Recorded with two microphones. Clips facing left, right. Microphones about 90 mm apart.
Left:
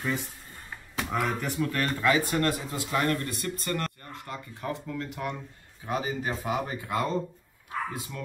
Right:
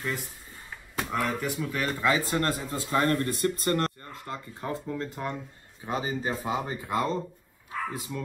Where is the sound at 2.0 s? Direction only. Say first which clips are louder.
Left 1 dB; 25° right (ahead or behind).